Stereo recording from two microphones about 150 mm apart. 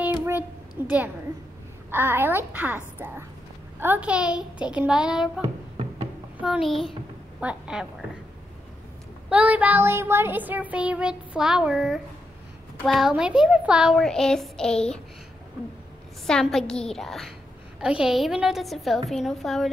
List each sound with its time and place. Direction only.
0.0 s a sound: 15° right (ahead or behind)
0.8 s child singing: 10° right (ahead or behind)
6.4 s a woman's voice: centre (ahead or behind)
9.3 s child singing: 10° right (ahead or behind)
12.8 s speech: centre (ahead or behind)
16.3 s speech: 5° left (ahead or behind)